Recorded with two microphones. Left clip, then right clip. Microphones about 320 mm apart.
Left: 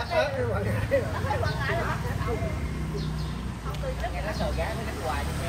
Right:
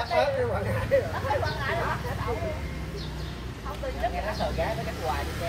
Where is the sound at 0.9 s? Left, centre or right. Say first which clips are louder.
Right 2 dB; right.